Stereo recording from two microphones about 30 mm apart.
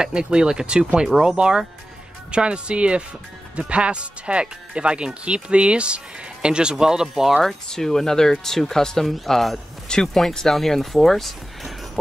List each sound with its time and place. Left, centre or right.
0.0 s speech: right
6.7 s speech: right
7.4 s speech: centre
10.1 s speech: centre